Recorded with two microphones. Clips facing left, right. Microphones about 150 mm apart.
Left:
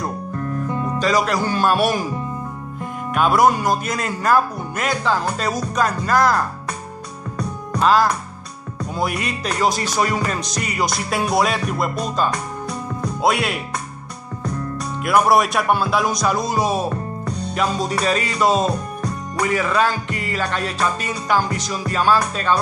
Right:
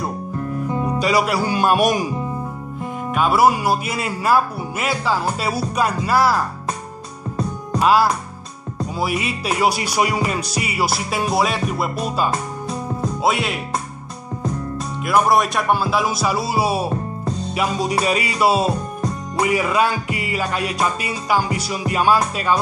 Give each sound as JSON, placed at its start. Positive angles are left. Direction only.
{"t": 0.4, "sound": "speech", "side_deg": -15}
{"t": 3.2, "sound": "music", "side_deg": -5}
{"t": 7.8, "sound": "music", "side_deg": -10}
{"t": 12.3, "sound": "music", "side_deg": -25}
{"t": 13.2, "sound": "speech", "side_deg": 0}
{"t": 15.0, "sound": "speech", "side_deg": 0}
{"t": 17.6, "sound": "music", "side_deg": -10}
{"t": 18.7, "sound": "music", "side_deg": -25}
{"t": 19.4, "sound": "music", "side_deg": -10}